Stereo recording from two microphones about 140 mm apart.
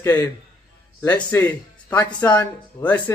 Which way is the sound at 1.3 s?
10° left (ahead or behind).